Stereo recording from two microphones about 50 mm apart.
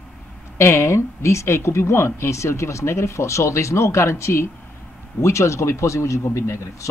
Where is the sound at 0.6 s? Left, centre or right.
Left.